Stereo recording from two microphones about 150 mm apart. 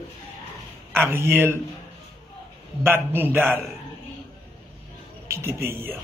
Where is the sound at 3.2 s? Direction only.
15° right (ahead or behind).